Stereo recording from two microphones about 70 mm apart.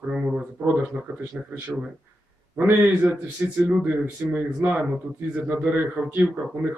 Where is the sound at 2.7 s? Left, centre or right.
Centre.